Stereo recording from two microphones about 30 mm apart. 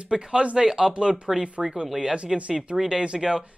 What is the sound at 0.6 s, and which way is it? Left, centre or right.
Speech, centre.